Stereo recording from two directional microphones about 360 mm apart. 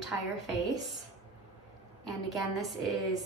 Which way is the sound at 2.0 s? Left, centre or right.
Centre.